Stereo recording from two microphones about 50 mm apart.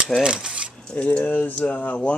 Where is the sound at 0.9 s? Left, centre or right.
Left.